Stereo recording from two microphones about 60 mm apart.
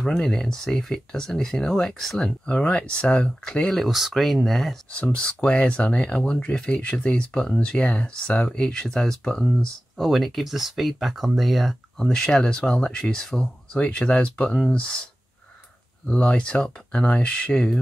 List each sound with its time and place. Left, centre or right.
0.0 s speech: centre
3.7 s speech: centre
4.9 s speech: left; by 12.1 s centre
12.1 s speech: centre
13.7 s speech: left
16.1 s speech: left